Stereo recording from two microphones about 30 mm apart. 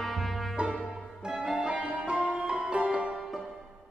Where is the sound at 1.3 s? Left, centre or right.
Centre.